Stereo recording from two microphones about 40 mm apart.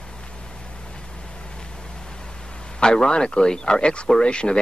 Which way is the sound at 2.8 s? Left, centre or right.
Centre.